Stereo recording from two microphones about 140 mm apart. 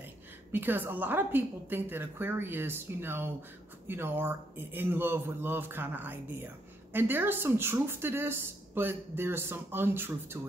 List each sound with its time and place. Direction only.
0.5 s speech: 15° right (ahead or behind)